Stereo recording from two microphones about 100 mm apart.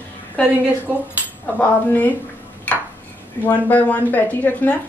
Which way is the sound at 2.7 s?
15° left (ahead or behind).